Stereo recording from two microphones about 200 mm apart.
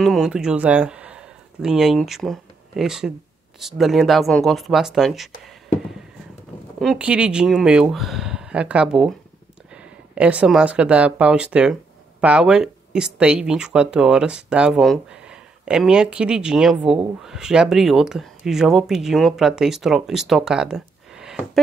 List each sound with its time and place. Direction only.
0.0 s speech: centre (ahead or behind)
6.8 s speech: centre (ahead or behind)